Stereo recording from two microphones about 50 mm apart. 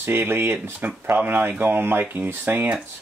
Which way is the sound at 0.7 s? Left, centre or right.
Right.